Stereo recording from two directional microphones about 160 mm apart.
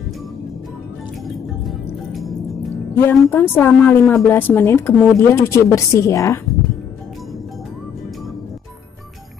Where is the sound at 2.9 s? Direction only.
15° left (ahead or behind).